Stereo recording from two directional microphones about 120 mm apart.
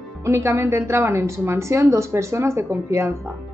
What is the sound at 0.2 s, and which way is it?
Speech, 20° right (ahead or behind).